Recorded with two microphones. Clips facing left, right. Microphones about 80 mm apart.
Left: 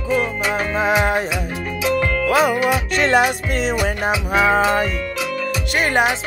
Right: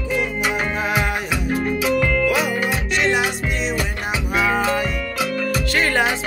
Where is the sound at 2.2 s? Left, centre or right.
Left.